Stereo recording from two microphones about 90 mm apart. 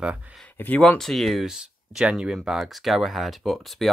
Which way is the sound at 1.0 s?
5° left (ahead or behind).